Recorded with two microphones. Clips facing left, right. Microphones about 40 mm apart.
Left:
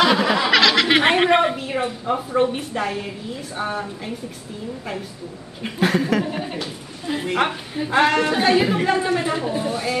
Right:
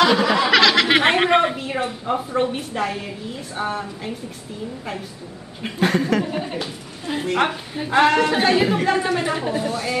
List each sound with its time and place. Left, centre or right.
0.0 s a sound: centre
3.5 s a woman's voice: centre
5.6 s a woman's voice: centre
9.6 s speech: centre